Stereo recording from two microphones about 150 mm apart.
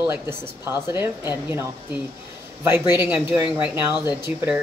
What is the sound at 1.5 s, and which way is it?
Speech, 15° right (ahead or behind).